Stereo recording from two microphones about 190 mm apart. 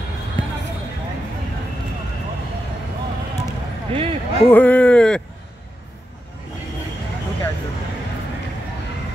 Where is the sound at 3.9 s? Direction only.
30° right (ahead or behind).